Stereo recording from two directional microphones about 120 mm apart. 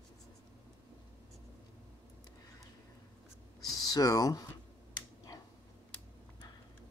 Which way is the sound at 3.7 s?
30° left (ahead or behind).